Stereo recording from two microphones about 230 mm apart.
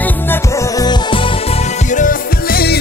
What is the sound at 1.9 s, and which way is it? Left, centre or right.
Music, left.